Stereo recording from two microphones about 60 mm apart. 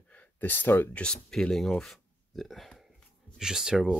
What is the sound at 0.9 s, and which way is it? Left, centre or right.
Speech, centre.